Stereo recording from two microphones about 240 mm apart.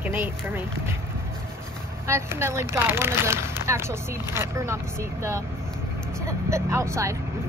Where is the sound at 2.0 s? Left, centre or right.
Centre.